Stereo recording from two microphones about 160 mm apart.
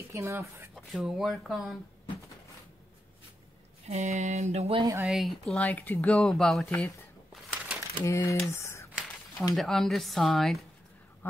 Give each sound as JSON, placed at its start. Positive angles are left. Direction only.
{"t": 0.1, "sound": "speech", "side_deg": -20}
{"t": 0.7, "sound": "speech", "side_deg": 0}
{"t": 3.8, "sound": "a sound", "side_deg": -45}
{"t": 5.0, "sound": "speech", "side_deg": 0}
{"t": 7.5, "sound": "crumpling", "side_deg": -10}
{"t": 8.0, "sound": "speech", "side_deg": 15}
{"t": 8.5, "sound": "typing", "side_deg": 15}
{"t": 9.6, "sound": "speech", "side_deg": 0}